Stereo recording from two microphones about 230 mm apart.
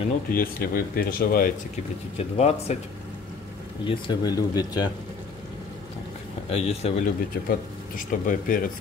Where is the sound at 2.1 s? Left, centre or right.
Left.